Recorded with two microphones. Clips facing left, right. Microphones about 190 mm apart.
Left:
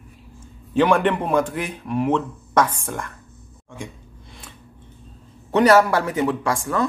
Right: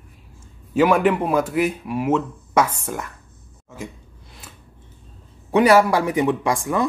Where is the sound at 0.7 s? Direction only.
5° right (ahead or behind).